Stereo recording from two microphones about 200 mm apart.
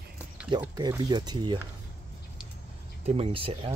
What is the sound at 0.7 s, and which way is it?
Speech, 20° right (ahead or behind).